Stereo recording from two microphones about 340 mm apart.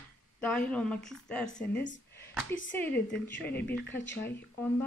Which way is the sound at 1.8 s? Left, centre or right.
Left.